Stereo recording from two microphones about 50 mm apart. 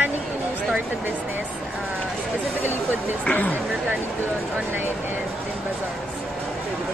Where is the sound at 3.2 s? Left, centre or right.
Left.